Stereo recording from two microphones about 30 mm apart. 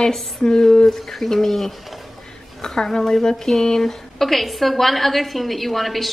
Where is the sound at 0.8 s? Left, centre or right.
Centre.